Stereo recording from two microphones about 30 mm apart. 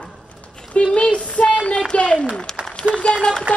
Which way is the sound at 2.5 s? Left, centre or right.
Left.